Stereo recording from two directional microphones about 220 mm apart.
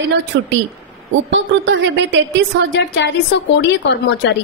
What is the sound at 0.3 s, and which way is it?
A woman's voice, 55° right (ahead or behind).